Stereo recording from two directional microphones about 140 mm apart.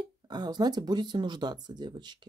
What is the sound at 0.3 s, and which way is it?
Speech, 30° right (ahead or behind).